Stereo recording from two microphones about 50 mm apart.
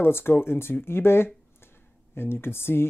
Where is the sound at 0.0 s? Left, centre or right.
Left.